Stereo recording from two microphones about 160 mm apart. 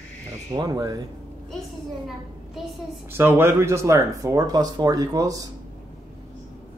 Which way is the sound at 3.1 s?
15° right (ahead or behind).